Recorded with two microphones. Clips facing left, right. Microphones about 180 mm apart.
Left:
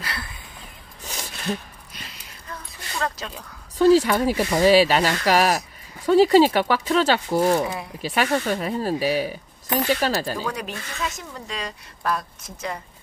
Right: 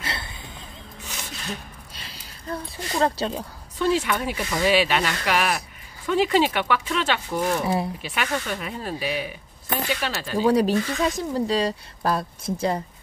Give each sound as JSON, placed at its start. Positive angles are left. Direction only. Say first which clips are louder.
{"t": 0.0, "sound": "a sound", "louder": "right 1 dB", "side_deg": -25}
{"t": 2.0, "sound": "a sound", "louder": "even", "side_deg": -30}
{"t": 3.7, "sound": "speech", "louder": "left 7 dB", "side_deg": 35}
{"t": 7.6, "sound": "speech", "louder": "right 5 dB", "side_deg": -30}
{"t": 8.0, "sound": "speech", "louder": "left 5 dB", "side_deg": 35}
{"t": 10.4, "sound": "speech", "louder": "right 11 dB", "side_deg": -30}